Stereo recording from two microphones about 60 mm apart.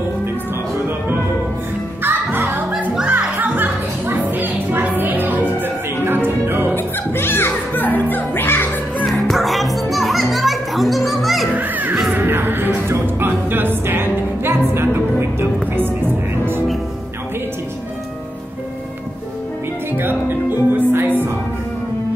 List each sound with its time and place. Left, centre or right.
2.0 s music: right
6.7 s music: left
9.0 s music: centre
11.5 s music: right
20.0 s music: right